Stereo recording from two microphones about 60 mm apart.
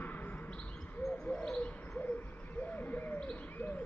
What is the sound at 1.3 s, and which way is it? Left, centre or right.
Bird, centre.